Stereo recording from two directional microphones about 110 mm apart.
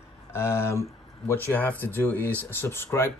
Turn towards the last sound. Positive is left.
turn(degrees=20)  # may be behind; listen again after turning